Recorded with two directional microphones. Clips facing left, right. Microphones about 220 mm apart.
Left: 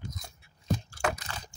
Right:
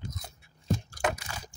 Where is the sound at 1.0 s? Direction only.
10° right (ahead or behind).